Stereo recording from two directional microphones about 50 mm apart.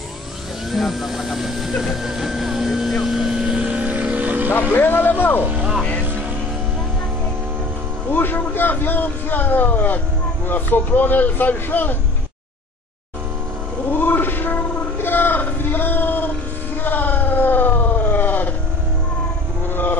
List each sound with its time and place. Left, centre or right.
0.7 s vehicle: centre
3.6 s vehicle: right
4.7 s speech: left
5.4 s vehicle: right
8.1 s a man's voice: left
13.8 s a sound: left
19.7 s livestock: left